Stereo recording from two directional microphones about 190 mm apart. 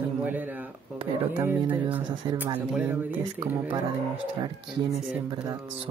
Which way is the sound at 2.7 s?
10° right (ahead or behind).